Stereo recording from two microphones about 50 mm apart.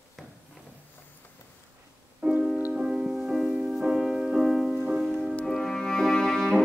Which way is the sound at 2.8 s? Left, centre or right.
Centre.